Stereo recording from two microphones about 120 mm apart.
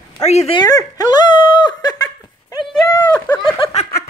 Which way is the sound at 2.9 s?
35° left (ahead or behind).